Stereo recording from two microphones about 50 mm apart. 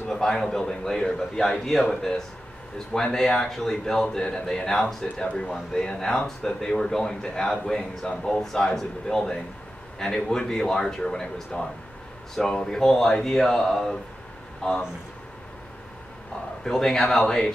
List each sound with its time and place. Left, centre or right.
0.1 s speech: centre
14.6 s speech: centre
16.6 s speech: centre